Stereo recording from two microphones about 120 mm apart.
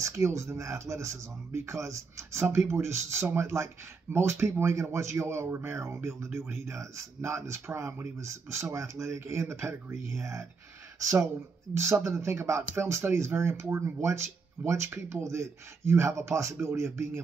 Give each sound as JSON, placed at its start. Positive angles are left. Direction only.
{"t": 0.0, "sound": "speech", "side_deg": -25}